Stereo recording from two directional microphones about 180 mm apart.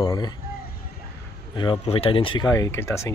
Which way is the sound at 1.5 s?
25° left (ahead or behind).